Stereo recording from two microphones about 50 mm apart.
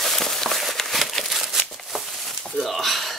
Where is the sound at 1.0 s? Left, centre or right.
Centre.